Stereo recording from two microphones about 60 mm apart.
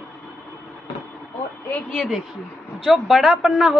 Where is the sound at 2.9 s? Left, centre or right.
Centre.